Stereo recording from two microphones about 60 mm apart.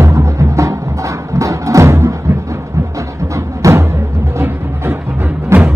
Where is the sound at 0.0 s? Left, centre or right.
Right.